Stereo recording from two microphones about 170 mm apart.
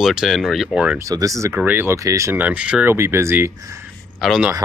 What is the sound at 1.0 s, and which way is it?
Speech, 20° right (ahead or behind).